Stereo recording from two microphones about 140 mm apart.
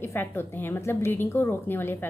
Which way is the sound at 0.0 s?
15° left (ahead or behind).